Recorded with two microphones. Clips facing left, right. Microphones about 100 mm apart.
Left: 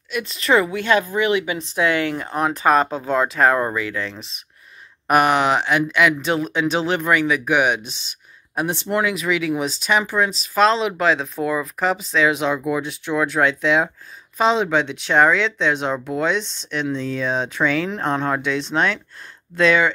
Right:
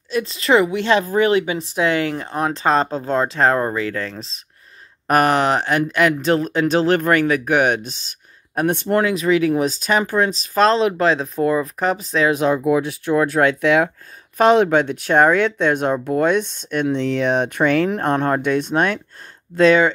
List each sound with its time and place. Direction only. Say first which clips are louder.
0.1 s a woman's voice: right 2 dB; 30° right (ahead or behind)
4.3 s speech: even; 15° left (ahead or behind)
5.1 s speech: right 1 dB; 40° right (ahead or behind)
9.0 s speech: right 5 dB; 35° right (ahead or behind)